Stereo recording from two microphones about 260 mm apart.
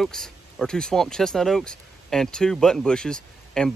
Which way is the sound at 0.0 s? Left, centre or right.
Centre.